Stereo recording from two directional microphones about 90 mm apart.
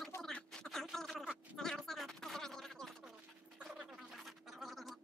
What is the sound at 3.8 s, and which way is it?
Gargling, 5° right (ahead or behind).